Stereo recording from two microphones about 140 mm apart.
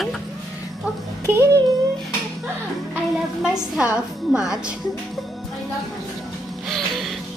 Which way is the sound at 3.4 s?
5° right (ahead or behind).